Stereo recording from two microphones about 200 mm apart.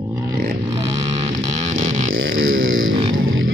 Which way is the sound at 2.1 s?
80° right.